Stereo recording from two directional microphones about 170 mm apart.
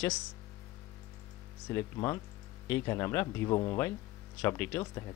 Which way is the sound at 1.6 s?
15° left (ahead or behind).